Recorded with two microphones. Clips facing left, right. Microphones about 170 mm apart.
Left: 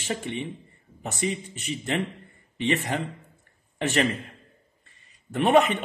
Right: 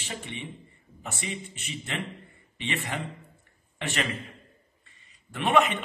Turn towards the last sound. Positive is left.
turn(degrees=40)  # may be behind; listen again after turning